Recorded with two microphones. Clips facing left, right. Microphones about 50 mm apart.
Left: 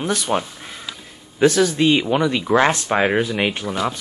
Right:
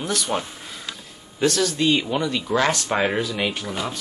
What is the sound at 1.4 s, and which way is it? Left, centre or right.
Speech, centre.